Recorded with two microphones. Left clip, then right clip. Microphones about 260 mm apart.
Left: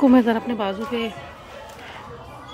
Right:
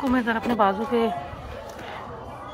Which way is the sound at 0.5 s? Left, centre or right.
Centre.